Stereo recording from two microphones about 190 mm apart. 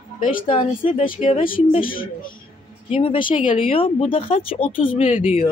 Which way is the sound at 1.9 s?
50° left (ahead or behind).